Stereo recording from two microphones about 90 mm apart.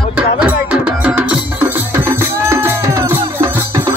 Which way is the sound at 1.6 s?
25° right (ahead or behind).